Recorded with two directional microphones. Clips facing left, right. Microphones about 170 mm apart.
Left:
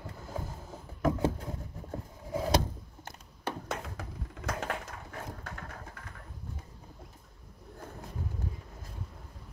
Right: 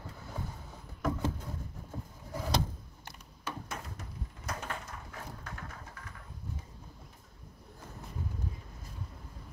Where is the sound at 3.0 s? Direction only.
50° left (ahead or behind).